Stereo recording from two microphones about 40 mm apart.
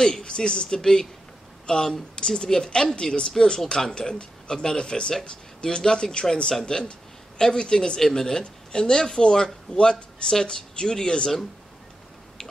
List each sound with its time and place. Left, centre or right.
0.0 s speech: left